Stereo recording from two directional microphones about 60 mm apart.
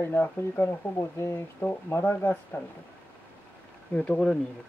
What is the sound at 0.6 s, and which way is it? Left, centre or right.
Speech, left.